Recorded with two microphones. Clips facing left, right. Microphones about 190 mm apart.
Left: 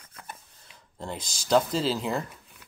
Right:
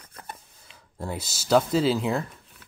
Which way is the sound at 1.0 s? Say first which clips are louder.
Right 3 dB; 5° right (ahead or behind).